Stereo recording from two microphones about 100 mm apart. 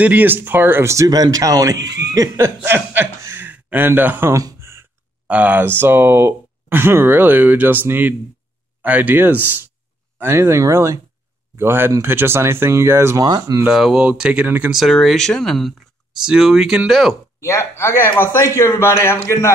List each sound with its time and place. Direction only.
0.0 s speech: 15° right (ahead or behind); by 2.5 s 35° right (ahead or behind)
2.6 s a man's voice: 20° right (ahead or behind)
4.4 s a sound: 30° right (ahead or behind)
5.3 s speech: 15° right (ahead or behind)
13.2 s speech: 40° right (ahead or behind)
13.7 s speech: 5° right (ahead or behind)
14.7 s speech: centre (ahead or behind)
17.4 s a man's voice: 25° left (ahead or behind)